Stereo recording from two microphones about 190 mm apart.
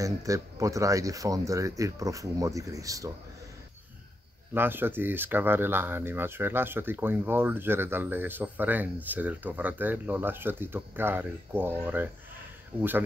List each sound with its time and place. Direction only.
0.0 s speech: 15° right (ahead or behind)
4.6 s speech: 10° right (ahead or behind)